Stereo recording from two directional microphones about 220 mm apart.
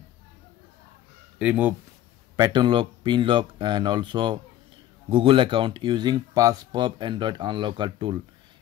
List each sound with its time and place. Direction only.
1.4 s speech: 5° right (ahead or behind)
2.3 s speech: 20° right (ahead or behind)